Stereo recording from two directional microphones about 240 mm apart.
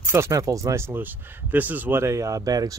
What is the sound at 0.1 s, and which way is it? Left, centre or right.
Speech, centre.